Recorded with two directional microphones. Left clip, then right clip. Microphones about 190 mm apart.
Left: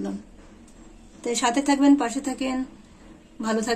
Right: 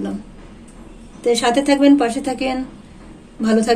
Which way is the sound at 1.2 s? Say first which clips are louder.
Right 8 dB; 45° left (ahead or behind).